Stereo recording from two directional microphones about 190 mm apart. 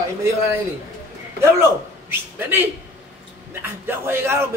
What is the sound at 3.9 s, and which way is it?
Speech, 10° right (ahead or behind).